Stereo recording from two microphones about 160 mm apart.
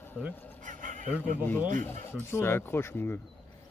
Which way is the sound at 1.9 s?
15° left (ahead or behind).